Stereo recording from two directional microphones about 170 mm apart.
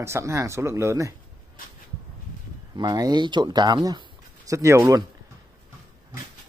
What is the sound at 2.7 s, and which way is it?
Speech, 20° right (ahead or behind).